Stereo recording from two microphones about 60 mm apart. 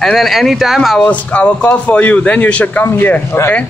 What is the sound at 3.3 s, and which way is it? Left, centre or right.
Speech, left.